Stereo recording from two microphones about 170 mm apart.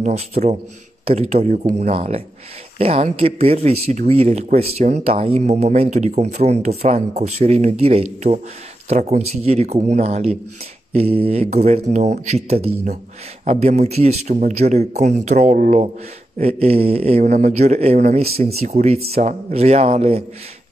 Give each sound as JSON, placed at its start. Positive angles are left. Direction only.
{"t": 0.0, "sound": "speech", "side_deg": -40}
{"t": 16.3, "sound": "speech", "side_deg": -35}